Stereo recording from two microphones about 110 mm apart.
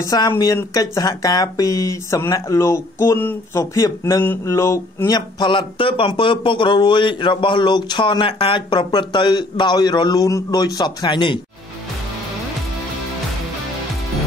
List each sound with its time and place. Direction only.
0.0 s speech: 35° left (ahead or behind)
0.3 s speech: 25° left (ahead or behind)
5.4 s speech: 45° left (ahead or behind)